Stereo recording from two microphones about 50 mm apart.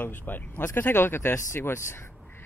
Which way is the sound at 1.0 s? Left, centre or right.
Left.